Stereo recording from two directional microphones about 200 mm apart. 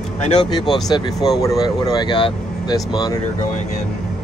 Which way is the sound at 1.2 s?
20° left (ahead or behind).